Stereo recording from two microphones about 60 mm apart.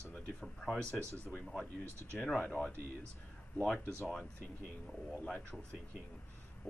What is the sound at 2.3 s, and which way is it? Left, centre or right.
Speech, left.